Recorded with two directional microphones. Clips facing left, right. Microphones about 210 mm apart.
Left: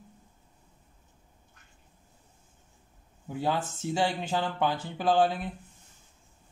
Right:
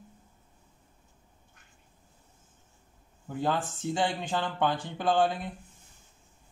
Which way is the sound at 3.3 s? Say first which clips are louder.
Even; 10° left (ahead or behind).